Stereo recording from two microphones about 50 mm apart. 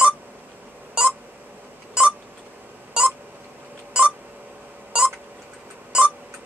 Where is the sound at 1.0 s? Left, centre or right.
Centre.